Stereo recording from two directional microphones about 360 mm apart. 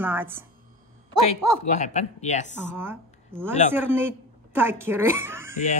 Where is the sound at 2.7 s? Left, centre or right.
Centre.